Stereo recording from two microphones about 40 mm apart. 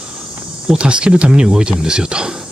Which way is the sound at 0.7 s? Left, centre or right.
Right.